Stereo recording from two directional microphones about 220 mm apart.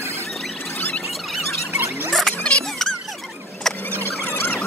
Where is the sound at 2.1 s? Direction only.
Centre (ahead or behind).